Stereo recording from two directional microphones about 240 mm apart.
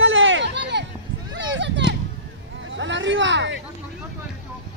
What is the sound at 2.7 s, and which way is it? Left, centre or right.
Hubbub, right.